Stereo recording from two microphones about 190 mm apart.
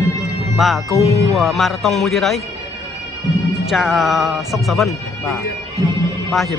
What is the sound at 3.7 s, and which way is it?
Speech, centre (ahead or behind).